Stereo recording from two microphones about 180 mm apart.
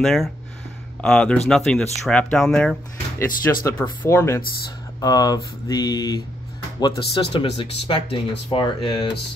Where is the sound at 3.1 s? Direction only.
15° left (ahead or behind).